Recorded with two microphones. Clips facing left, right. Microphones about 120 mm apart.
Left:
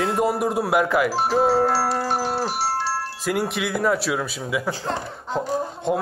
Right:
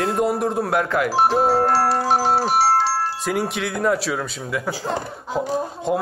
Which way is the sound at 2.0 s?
90° right.